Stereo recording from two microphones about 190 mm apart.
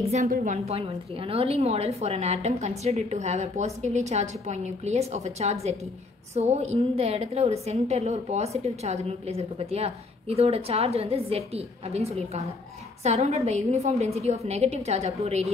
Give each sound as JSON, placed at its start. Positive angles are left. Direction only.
{"t": 0.1, "sound": "a woman's voice", "side_deg": -40}
{"t": 0.7, "sound": "a woman's voice", "side_deg": -30}